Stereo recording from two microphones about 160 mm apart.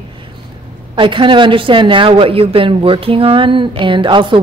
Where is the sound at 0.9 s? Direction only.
30° right (ahead or behind).